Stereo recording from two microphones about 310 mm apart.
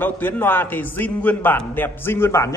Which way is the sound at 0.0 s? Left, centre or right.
Centre.